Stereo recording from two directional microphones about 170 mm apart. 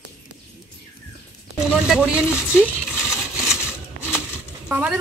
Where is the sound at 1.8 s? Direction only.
5° right (ahead or behind).